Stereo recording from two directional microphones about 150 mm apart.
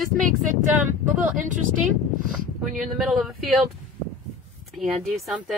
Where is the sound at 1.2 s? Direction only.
60° right (ahead or behind).